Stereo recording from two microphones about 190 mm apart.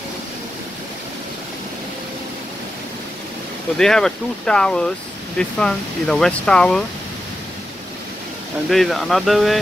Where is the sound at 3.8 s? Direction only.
5° left (ahead or behind).